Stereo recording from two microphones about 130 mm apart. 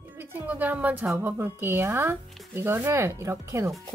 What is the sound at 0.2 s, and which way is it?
A woman's voice, 15° right (ahead or behind).